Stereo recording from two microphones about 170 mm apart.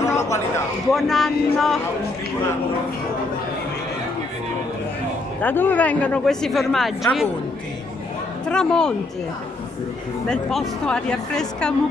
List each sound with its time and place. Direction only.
0.0 s a sound: 15° left (ahead or behind)
0.9 s speech: centre (ahead or behind)
5.4 s speech: 10° left (ahead or behind)
8.5 s speech: 5° left (ahead or behind)
10.2 s speech: 5° left (ahead or behind)